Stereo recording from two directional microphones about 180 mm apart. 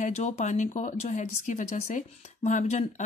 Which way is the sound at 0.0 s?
40° left (ahead or behind).